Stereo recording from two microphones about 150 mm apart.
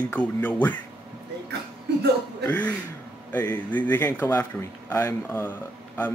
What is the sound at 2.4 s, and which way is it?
Speech, 10° left (ahead or behind).